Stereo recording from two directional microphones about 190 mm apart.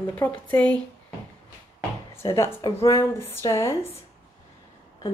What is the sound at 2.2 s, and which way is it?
Speech, 15° left (ahead or behind).